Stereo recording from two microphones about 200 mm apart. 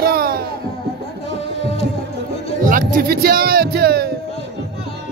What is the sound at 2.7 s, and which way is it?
Music, 45° right (ahead or behind).